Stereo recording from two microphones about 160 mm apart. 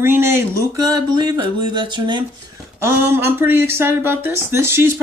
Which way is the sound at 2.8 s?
15° right (ahead or behind).